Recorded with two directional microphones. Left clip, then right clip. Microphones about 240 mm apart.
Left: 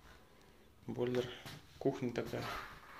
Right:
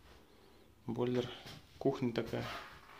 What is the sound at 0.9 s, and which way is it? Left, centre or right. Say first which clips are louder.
Speech: right 1 dB; right.